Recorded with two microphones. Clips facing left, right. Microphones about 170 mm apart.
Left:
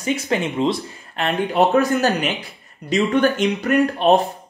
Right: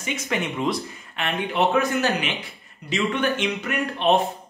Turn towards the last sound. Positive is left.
turn(degrees=40)  # may be behind; listen again after turning